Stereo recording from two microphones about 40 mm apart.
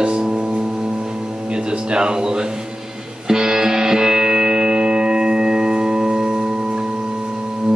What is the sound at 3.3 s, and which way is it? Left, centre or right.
Music, centre.